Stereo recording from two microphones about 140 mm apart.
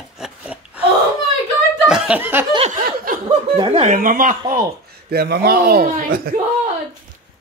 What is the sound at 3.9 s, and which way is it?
Speech, 80° right.